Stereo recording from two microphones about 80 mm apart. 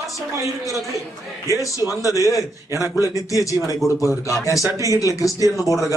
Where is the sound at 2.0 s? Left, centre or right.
Left.